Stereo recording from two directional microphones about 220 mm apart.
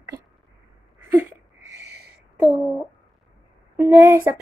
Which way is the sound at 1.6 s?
50° right (ahead or behind).